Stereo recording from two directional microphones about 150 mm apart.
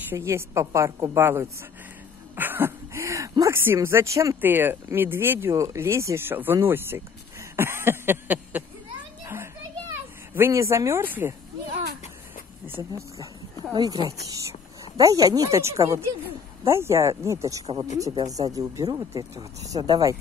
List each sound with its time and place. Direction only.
0.1 s speech: 15° right (ahead or behind)
9.2 s children playing: 15° right (ahead or behind)
10.3 s speech: 20° right (ahead or behind)
12.6 s speech: 15° right (ahead or behind)